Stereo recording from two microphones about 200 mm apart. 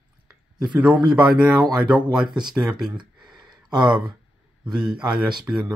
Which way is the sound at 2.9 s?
20° right (ahead or behind).